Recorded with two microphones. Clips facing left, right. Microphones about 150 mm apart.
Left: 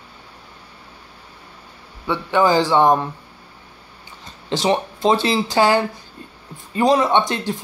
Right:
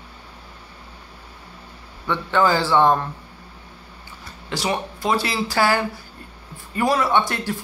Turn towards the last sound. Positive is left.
turn(degrees=20)  # may be behind; listen again after turning